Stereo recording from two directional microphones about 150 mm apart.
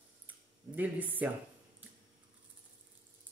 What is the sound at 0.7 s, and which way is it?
Speech, 10° right (ahead or behind).